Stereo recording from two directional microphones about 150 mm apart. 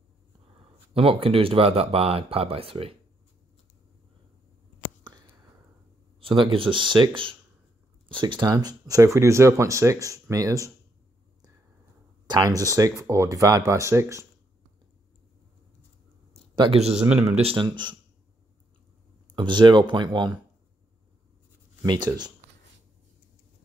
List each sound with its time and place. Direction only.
0.9 s speech: 40° right (ahead or behind)
6.2 s speech: 35° right (ahead or behind)
8.1 s speech: 35° right (ahead or behind)
12.3 s speech: 25° right (ahead or behind)
16.5 s speech: 40° right (ahead or behind)
16.9 s speech: 5° right (ahead or behind)
17.4 s speech: 35° right (ahead or behind)
19.3 s speech: 30° right (ahead or behind)
21.8 s speech: 30° right (ahead or behind)